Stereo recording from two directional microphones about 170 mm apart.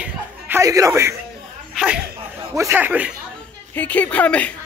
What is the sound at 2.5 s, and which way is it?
Speech, 15° right (ahead or behind).